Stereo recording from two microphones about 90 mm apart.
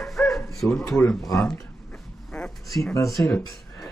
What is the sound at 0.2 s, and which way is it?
Dog, 10° left (ahead or behind).